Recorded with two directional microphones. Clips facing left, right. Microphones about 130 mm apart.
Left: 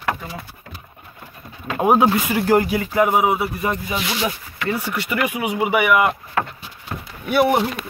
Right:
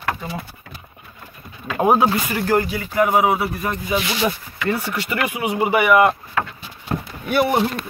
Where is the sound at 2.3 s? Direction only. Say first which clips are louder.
Left 2 dB; 15° left (ahead or behind).